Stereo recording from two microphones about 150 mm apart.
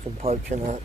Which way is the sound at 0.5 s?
50° right (ahead or behind).